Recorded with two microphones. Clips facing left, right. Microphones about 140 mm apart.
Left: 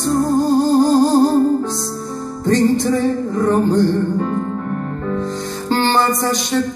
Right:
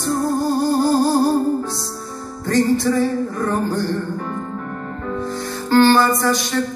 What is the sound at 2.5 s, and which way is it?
Music, 20° left (ahead or behind).